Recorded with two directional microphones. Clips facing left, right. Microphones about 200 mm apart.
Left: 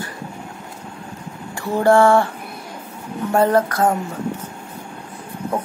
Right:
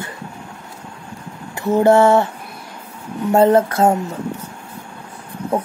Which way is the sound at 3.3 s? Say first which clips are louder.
Right 3 dB; 25° right (ahead or behind).